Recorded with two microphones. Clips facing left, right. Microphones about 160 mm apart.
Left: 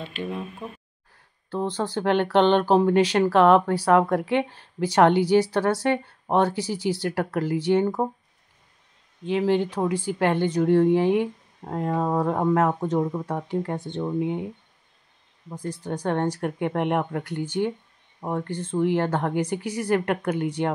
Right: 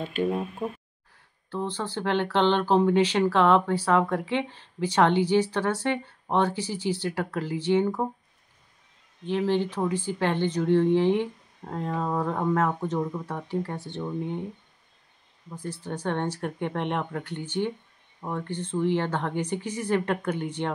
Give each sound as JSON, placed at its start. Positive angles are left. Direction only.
{"t": 0.0, "sound": "speech", "side_deg": -45}
{"t": 1.5, "sound": "speech", "side_deg": 15}
{"t": 9.2, "sound": "speech", "side_deg": 15}
{"t": 15.5, "sound": "speech", "side_deg": 15}